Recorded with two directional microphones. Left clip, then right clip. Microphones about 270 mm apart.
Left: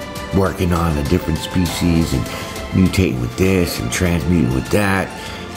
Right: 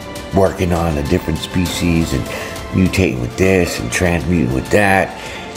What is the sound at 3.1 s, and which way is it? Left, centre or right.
Speech, centre.